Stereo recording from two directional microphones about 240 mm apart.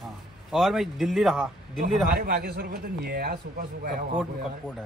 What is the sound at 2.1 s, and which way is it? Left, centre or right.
A man's voice, right.